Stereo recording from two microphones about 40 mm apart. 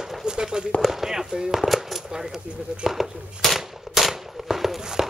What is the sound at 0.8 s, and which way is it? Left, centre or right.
Speech, centre.